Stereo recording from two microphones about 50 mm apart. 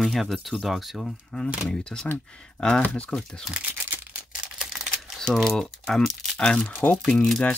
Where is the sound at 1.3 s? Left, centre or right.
Centre.